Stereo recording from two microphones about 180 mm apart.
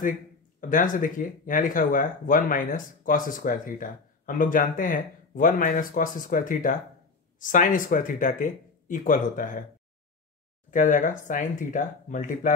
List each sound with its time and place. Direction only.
0.6 s speech: 45° left (ahead or behind)
10.7 s speech: 45° left (ahead or behind)